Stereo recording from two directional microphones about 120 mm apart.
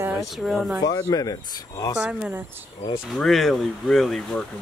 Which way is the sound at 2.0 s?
10° right (ahead or behind).